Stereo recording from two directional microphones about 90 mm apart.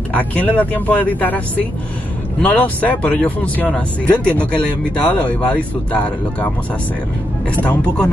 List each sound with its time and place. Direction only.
0.1 s speech: 15° left (ahead or behind)
2.4 s speech: 15° left (ahead or behind)
7.5 s speech: 15° left (ahead or behind)